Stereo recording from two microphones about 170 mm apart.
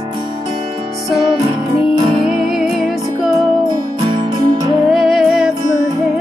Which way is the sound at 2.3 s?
Centre (ahead or behind).